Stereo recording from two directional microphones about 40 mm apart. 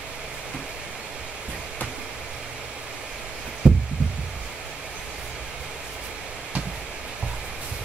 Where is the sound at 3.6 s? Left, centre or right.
Right.